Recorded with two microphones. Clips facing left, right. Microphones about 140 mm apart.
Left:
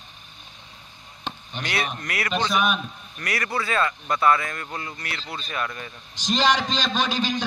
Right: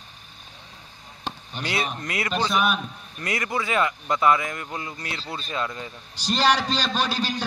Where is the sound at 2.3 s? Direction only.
5° right (ahead or behind).